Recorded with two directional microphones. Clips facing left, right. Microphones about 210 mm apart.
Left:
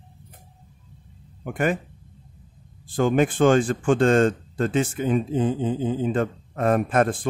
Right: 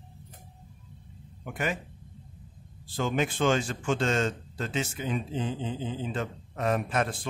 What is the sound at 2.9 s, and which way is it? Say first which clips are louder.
Speech: left 8 dB; 50° left (ahead or behind).